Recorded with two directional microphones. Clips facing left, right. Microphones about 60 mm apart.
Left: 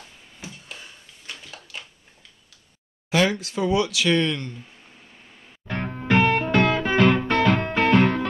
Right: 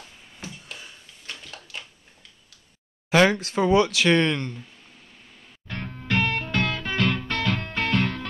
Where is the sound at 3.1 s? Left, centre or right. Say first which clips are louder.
Right 3 dB; right.